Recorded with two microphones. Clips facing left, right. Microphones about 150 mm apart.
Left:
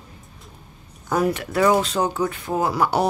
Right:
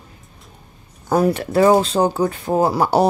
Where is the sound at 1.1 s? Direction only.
35° right (ahead or behind).